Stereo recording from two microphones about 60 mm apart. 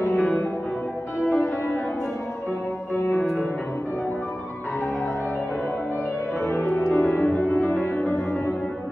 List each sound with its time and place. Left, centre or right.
0.1 s music: left
6.5 s music: left
6.9 s music: left
7.7 s music: left
8.1 s music: left